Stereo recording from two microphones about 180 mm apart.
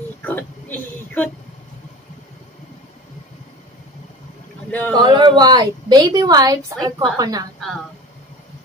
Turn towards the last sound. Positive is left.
turn(degrees=0)  # may be behind; listen again after turning